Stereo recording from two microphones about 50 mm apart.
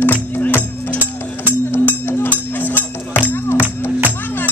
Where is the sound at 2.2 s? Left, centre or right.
Left.